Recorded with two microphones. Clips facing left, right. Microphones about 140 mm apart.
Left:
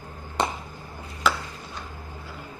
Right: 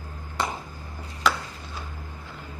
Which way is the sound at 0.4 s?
20° left (ahead or behind).